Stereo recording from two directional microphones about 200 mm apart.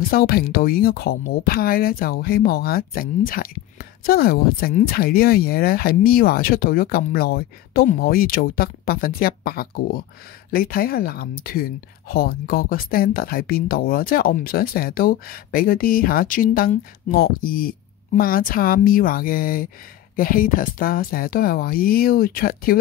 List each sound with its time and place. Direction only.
0.1 s speech: 50° left (ahead or behind)